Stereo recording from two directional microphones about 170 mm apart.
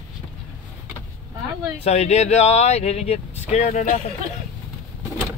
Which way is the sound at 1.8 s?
40° left (ahead or behind).